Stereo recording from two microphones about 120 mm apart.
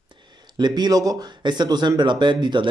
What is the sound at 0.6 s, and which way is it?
Speech, 35° right (ahead or behind).